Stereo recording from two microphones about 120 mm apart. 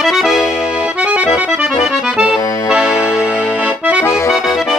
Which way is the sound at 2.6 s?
5° right (ahead or behind).